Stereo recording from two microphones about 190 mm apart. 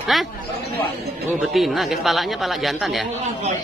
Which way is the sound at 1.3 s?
5° right (ahead or behind).